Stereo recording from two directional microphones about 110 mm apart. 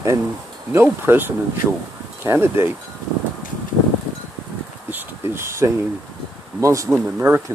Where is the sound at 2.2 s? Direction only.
20° right (ahead or behind).